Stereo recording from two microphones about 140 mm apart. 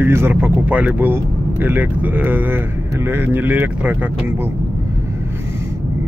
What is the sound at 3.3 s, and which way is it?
Speech, 15° right (ahead or behind).